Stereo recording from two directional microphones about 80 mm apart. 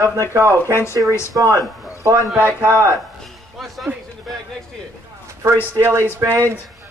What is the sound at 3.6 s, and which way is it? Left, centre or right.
Speech, centre.